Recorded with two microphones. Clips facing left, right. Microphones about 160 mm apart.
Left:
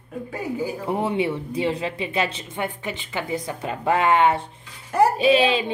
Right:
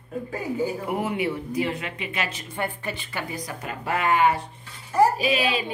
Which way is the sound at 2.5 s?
15° left (ahead or behind).